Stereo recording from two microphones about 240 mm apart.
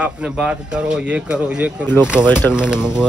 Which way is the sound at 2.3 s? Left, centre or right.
Centre.